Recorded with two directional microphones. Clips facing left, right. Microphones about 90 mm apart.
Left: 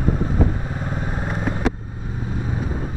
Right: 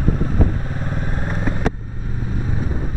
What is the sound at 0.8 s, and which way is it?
Vehicle, 10° left (ahead or behind).